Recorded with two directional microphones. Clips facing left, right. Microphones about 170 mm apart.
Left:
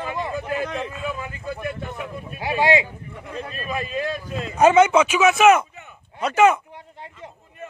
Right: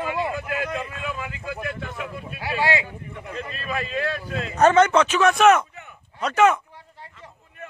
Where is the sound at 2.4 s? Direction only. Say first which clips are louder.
Left 4 dB; 20° left (ahead or behind).